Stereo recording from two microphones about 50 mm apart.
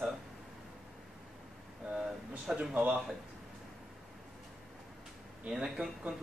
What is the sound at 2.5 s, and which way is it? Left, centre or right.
Speech, right.